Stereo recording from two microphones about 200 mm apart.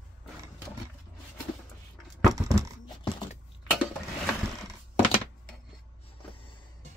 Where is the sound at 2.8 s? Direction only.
25° left (ahead or behind).